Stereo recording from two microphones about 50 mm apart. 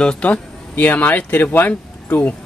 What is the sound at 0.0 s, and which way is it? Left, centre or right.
Speech, left.